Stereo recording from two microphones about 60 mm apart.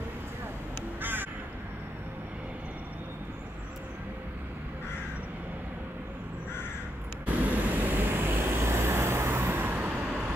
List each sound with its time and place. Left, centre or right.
1.0 s crow: right
7.4 s vehicle: right